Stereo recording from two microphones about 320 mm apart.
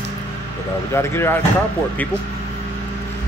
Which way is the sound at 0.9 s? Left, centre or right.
Centre.